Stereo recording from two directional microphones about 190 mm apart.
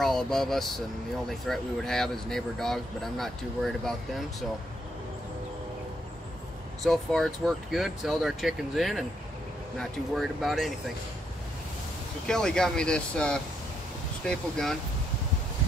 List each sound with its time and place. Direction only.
0.0 s speech: centre (ahead or behind)
6.8 s speech: centre (ahead or behind)
12.3 s speech: 5° left (ahead or behind)